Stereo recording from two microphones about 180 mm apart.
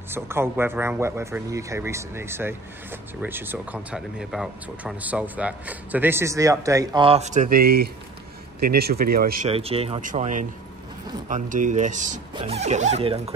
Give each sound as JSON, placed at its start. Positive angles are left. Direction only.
{"t": 0.1, "sound": "speech", "side_deg": -15}
{"t": 9.5, "sound": "speech", "side_deg": -35}
{"t": 10.0, "sound": "speech", "side_deg": -45}